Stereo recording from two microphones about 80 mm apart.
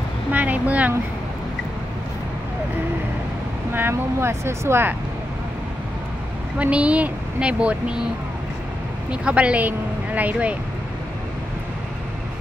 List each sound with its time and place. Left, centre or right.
0.3 s speech: centre
3.7 s speech: right
6.6 s speech: centre
9.1 s speech: centre